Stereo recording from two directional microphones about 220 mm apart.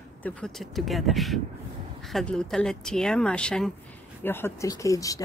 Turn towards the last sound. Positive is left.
turn(degrees=15)  # may be behind; listen again after turning